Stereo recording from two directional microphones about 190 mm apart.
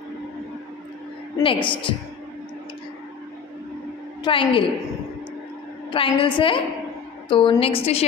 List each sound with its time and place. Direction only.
1.4 s a woman's voice: 25° left (ahead or behind)
4.2 s a woman's voice: 25° left (ahead or behind)
5.9 s a woman's voice: 25° left (ahead or behind)